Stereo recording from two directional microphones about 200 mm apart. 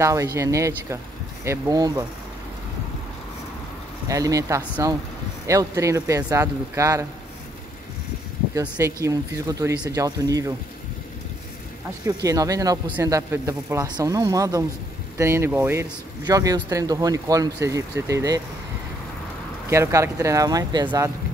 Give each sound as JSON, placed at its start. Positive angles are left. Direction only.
{"t": 0.0, "sound": "speech", "side_deg": -15}
{"t": 4.1, "sound": "speech", "side_deg": -15}
{"t": 8.5, "sound": "speech", "side_deg": -15}
{"t": 12.2, "sound": "speech", "side_deg": -15}
{"t": 19.7, "sound": "speech", "side_deg": -15}